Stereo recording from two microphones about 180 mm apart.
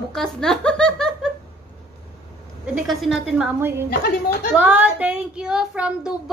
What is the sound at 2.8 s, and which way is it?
Speech, centre (ahead or behind).